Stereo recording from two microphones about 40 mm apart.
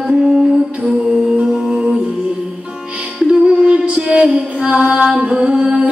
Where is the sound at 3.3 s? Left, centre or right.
Right.